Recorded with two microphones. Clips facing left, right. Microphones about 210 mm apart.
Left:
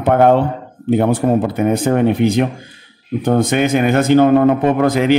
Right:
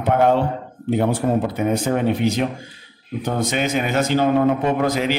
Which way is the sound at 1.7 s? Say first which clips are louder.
Left 6 dB; 55° left (ahead or behind).